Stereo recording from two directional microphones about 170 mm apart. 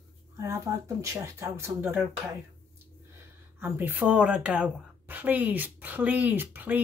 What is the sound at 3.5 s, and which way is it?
A woman's voice, 10° right (ahead or behind).